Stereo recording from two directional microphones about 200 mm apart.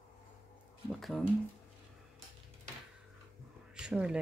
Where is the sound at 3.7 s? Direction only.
5° right (ahead or behind).